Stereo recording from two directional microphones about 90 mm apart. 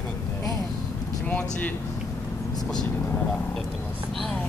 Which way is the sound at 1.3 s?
15° left (ahead or behind).